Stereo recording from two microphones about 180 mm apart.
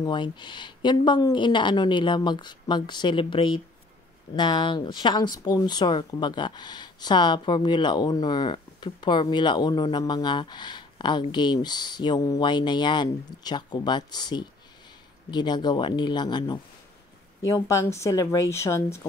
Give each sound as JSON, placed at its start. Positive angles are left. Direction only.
{"t": 0.0, "sound": "speech", "side_deg": 25}